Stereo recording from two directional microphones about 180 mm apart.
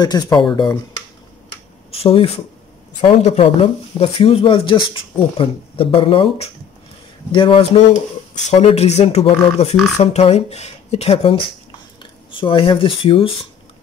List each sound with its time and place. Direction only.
0.0 s speech: 25° left (ahead or behind)
1.9 s speech: 30° left (ahead or behind)